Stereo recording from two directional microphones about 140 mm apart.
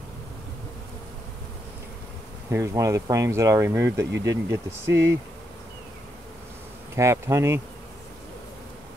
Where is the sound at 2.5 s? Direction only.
20° right (ahead or behind).